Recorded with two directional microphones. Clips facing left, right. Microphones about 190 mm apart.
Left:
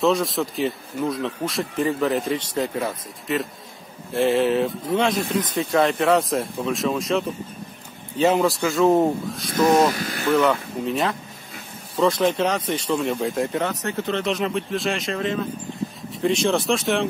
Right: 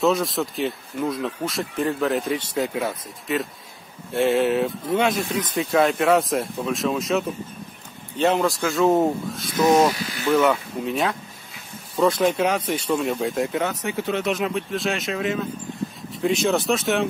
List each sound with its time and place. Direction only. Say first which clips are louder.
0.0 s speech: even; centre (ahead or behind)
9.9 s speech: left 1 dB; 50° left (ahead or behind)
10.3 s speech: even; centre (ahead or behind)